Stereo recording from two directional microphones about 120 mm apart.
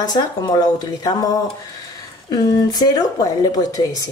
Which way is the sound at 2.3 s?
35° left (ahead or behind).